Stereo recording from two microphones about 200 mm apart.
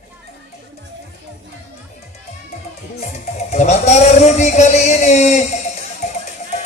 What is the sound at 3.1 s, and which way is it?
Music, 35° left (ahead or behind).